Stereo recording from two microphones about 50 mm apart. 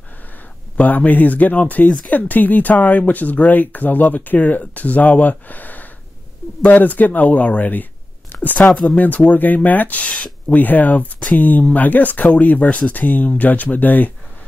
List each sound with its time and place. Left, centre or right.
0.7 s speech: left